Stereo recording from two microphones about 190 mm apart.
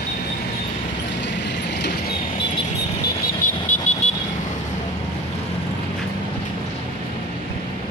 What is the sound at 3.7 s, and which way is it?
Vehicle, 40° left (ahead or behind).